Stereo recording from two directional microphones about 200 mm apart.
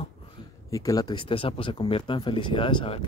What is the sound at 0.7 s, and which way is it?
Speech, 15° left (ahead or behind).